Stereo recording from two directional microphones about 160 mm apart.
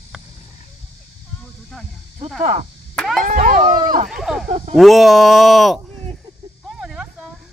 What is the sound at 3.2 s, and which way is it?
Speech, 55° right (ahead or behind).